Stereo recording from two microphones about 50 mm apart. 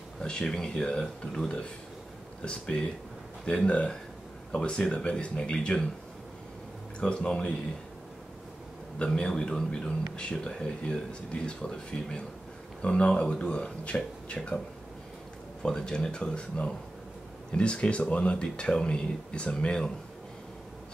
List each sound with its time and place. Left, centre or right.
0.2 s a man's voice: centre
2.4 s speech: left
7.0 s speech: centre
8.9 s a man's voice: centre
15.6 s a man's voice: centre